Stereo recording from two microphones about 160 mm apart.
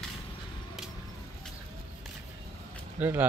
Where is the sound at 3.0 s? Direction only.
10° right (ahead or behind).